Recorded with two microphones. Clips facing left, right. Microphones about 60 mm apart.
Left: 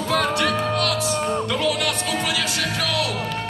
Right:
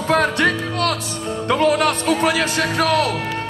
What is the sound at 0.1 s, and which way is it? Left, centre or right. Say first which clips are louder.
Music: right 4 dB; right.